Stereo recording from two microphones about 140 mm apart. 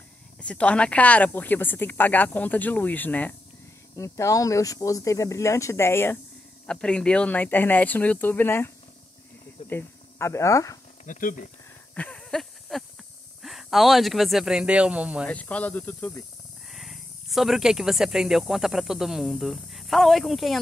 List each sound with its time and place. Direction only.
0.4 s speech: 10° left (ahead or behind)
3.9 s speech: 20° left (ahead or behind)
6.6 s speech: 5° left (ahead or behind); by 10.8 s 25° left (ahead or behind)
11.1 s speech: 75° left (ahead or behind)
11.9 s a sound: 10° left (ahead or behind)
13.4 s speech: centre (ahead or behind)
15.2 s speech: 10° left (ahead or behind)
16.7 s speech: centre (ahead or behind)